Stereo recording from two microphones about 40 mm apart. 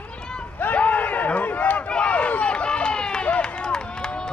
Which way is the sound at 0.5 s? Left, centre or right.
Left.